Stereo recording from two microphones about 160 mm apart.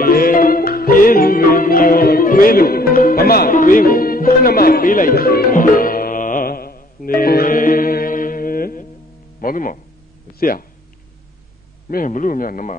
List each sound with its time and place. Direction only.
0.0 s music: 65° left (ahead or behind)
9.4 s speech: 60° left (ahead or behind)
11.9 s speech: 55° left (ahead or behind)